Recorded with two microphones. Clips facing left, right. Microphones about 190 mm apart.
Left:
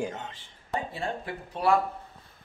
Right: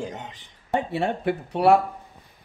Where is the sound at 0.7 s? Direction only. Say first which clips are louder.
Right 7 dB; 70° right (ahead or behind).